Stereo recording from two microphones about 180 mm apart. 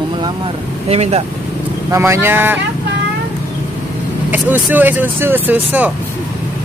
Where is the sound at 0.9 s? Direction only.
35° right (ahead or behind).